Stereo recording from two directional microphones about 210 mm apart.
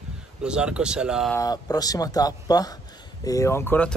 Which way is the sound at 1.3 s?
20° left (ahead or behind).